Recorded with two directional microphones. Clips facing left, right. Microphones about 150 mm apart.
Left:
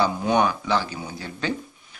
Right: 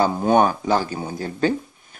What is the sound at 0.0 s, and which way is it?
Speech, 45° right (ahead or behind).